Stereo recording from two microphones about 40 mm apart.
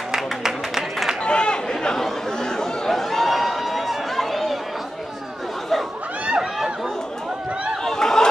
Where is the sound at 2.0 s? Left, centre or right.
Centre.